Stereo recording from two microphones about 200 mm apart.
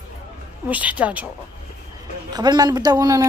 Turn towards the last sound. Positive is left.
turn(degrees=-20)  # may be behind; listen again after turning